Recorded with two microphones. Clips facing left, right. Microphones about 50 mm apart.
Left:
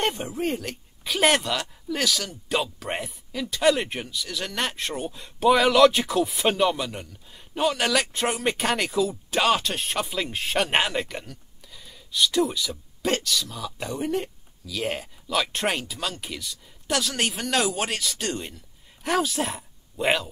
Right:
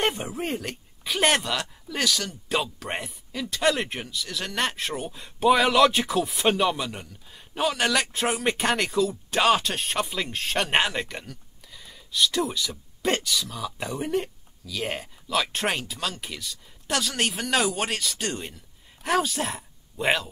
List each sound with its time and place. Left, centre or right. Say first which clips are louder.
0.0 s speech: left 1 dB; centre